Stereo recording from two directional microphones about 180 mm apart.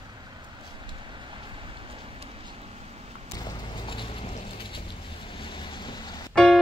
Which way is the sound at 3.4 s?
25° left (ahead or behind).